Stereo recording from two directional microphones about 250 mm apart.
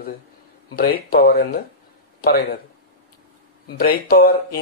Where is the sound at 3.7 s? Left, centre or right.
Left.